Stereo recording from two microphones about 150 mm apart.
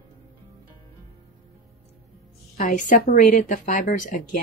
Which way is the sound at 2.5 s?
60° left (ahead or behind).